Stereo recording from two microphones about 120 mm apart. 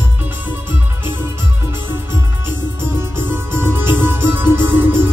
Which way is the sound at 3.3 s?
20° right (ahead or behind).